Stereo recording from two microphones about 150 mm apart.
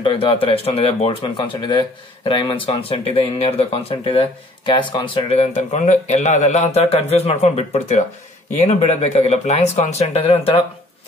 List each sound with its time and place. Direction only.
0.0 s speech: 35° left (ahead or behind)